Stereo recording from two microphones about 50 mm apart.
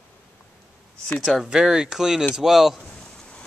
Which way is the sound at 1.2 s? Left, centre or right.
Centre.